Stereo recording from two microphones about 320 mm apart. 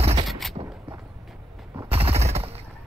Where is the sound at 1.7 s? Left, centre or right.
Centre.